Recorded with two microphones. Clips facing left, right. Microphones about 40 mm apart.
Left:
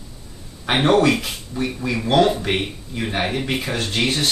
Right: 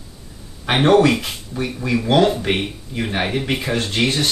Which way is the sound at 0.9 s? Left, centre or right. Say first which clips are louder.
Right 2 dB; centre.